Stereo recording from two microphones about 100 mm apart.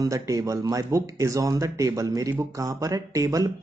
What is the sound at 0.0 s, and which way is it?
Speech, 35° right (ahead or behind).